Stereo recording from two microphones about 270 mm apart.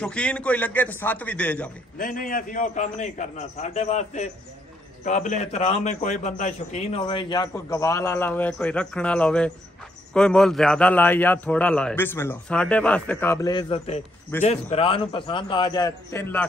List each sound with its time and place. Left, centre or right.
0.0 s a man's voice: centre
2.0 s a man's voice: left; by 16.4 s centre